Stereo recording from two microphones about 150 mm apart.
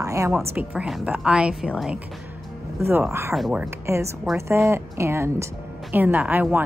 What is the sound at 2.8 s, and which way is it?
Speech, 15° right (ahead or behind).